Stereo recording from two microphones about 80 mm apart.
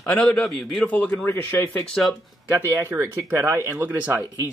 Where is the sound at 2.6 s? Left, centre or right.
Right.